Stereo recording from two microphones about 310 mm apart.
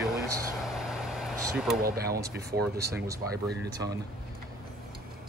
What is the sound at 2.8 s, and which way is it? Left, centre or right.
Speech, centre.